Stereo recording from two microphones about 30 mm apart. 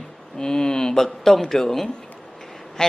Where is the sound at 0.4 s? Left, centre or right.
Centre.